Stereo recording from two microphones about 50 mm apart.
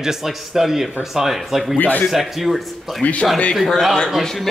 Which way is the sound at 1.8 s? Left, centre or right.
Left.